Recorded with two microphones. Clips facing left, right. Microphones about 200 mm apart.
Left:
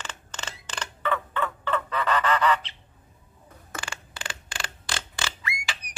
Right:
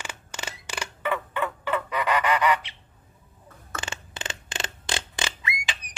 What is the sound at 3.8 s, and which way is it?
Creak, 20° right (ahead or behind).